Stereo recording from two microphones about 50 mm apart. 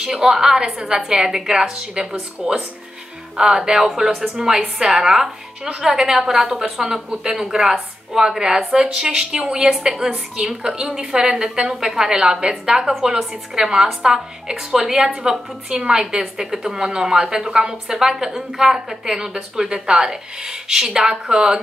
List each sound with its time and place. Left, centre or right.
0.0 s a woman's voice: centre